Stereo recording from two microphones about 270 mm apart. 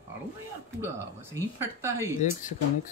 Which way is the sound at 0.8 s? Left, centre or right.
Centre.